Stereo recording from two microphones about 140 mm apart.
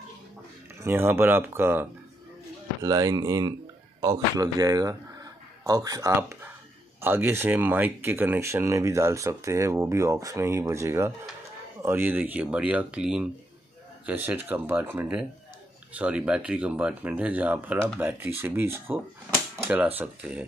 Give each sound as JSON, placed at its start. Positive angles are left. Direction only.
{"t": 0.8, "sound": "speech", "side_deg": -15}
{"t": 2.8, "sound": "speech", "side_deg": -25}